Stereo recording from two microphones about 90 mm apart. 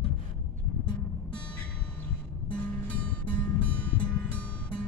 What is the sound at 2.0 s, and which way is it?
Music, 15° left (ahead or behind).